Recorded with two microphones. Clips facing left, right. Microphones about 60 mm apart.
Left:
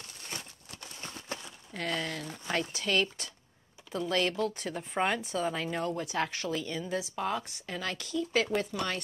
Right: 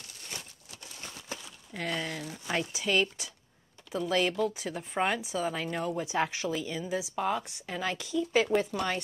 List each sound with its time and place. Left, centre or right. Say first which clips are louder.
1.0 s horse: left 2 dB; left
1.7 s speech: even; centre